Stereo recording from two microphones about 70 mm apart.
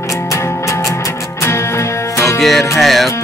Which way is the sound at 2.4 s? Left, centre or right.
Centre.